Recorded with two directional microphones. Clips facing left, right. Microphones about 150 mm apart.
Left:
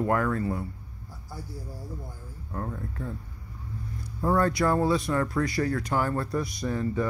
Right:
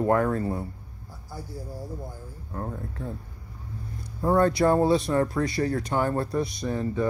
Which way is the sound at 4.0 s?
25° right (ahead or behind).